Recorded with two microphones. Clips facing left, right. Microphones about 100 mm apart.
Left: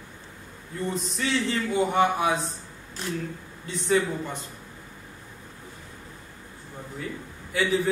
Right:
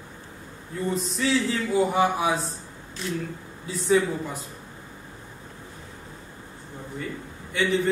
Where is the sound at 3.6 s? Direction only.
Centre (ahead or behind).